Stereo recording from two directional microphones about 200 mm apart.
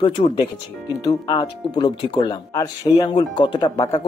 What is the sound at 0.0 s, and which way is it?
Speech, 25° left (ahead or behind).